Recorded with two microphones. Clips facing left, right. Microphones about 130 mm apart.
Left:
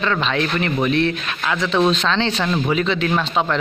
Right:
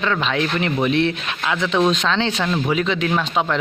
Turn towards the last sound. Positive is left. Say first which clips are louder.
# left 1 dB
turn(degrees=-5)  # may be behind; listen again after turning